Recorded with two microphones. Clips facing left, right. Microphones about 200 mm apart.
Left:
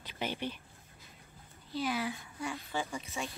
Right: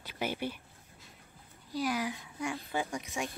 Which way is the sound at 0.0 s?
10° right (ahead or behind).